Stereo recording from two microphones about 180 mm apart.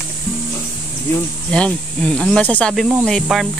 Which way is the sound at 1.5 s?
5° left (ahead or behind).